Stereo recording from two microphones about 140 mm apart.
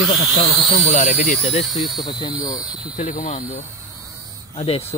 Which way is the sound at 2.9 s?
65° left (ahead or behind).